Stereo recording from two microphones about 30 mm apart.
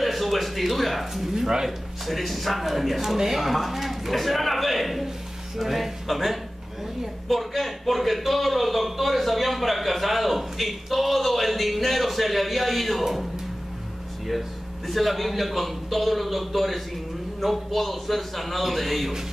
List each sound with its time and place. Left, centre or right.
0.0 s speech: centre
1.3 s speech: centre
2.0 s a man's voice: centre
14.9 s speech: centre